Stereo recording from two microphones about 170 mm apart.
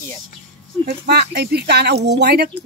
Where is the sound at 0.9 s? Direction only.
75° right (ahead or behind).